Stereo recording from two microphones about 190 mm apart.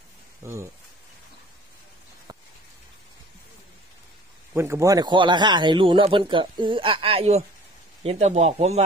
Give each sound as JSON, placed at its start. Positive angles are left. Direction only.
{"t": 0.4, "sound": "speech", "side_deg": -15}
{"t": 2.3, "sound": "raindrop", "side_deg": -20}
{"t": 4.6, "sound": "speech", "side_deg": -15}